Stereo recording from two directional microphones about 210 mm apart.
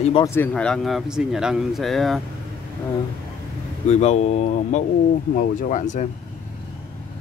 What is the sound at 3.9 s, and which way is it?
Speech, 30° left (ahead or behind).